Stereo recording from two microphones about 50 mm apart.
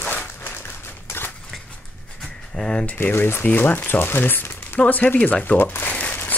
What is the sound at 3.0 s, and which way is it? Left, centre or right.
Speech, left.